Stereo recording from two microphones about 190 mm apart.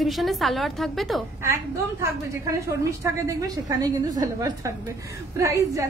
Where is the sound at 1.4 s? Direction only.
15° right (ahead or behind).